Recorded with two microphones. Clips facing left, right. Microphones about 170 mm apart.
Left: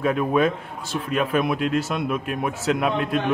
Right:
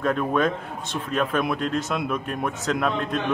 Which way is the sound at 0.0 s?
10° left (ahead or behind).